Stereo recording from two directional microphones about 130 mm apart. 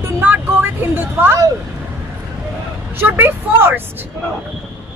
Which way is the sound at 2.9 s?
15° right (ahead or behind).